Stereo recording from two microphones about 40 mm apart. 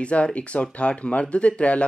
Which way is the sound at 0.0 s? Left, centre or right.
Left.